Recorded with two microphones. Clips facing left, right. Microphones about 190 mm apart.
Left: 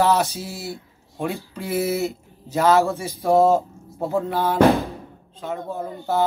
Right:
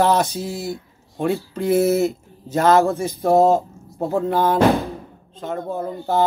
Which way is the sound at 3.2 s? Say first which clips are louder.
Right 1 dB; 15° right (ahead or behind).